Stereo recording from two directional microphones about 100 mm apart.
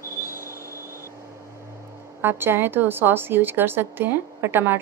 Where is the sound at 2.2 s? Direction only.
20° right (ahead or behind).